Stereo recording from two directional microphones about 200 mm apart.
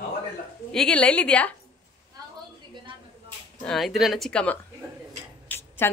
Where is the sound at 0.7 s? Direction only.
5° left (ahead or behind).